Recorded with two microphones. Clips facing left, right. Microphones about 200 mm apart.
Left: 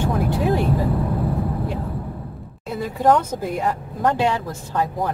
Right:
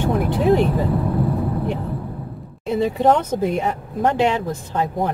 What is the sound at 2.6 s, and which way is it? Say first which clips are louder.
Speech: right 3 dB; 25° right (ahead or behind).